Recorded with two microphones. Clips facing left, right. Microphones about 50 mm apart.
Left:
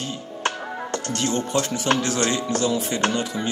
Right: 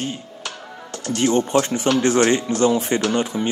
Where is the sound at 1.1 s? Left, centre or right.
Right.